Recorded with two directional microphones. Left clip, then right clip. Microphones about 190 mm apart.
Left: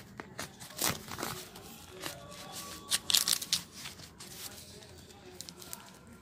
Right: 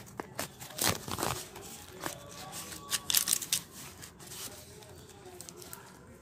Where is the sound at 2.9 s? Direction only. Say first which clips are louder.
Left 3 dB; centre (ahead or behind).